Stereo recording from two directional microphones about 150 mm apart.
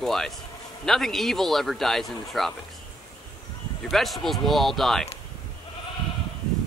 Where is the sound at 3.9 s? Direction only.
Centre (ahead or behind).